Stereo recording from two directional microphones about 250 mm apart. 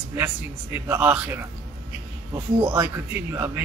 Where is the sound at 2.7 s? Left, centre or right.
Centre.